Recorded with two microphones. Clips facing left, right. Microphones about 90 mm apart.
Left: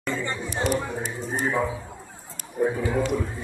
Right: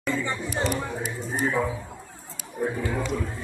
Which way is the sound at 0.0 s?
5° right (ahead or behind).